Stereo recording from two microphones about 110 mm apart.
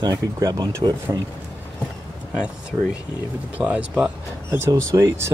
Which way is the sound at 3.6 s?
10° right (ahead or behind).